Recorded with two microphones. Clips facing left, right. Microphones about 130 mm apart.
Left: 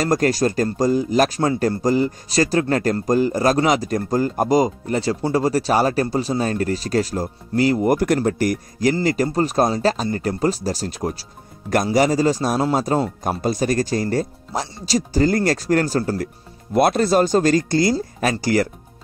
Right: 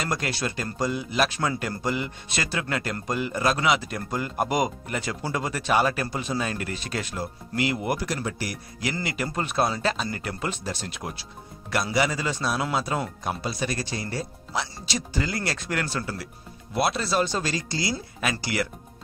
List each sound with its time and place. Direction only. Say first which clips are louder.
0.0 s speech: left 11 dB; 40° left (ahead or behind)
8.0 s speech: left 12 dB; 50° left (ahead or behind)
17.9 s speech: left 8 dB; 35° left (ahead or behind)